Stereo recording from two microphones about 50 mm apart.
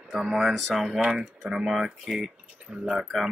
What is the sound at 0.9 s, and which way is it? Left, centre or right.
Speech, centre.